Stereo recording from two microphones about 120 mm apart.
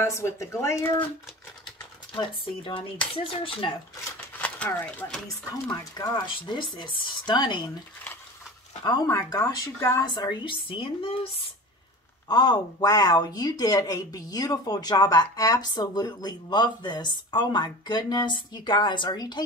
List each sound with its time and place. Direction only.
0.0 s speech: 25° left (ahead or behind)
3.3 s speech: 45° left (ahead or behind)
4.4 s speech: 10° left (ahead or behind)
5.9 s speech: 35° left (ahead or behind)
8.8 s speech: 35° left (ahead or behind)
10.4 s speech: 45° left (ahead or behind)
12.3 s speech: 35° left (ahead or behind)